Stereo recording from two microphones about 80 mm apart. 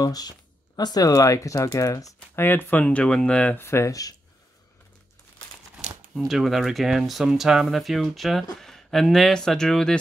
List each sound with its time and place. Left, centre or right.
0.0 s speech: left
2.3 s speech: left
2.8 s speech: centre
3.5 s speech: left
3.9 s speech: left
6.1 s speech: centre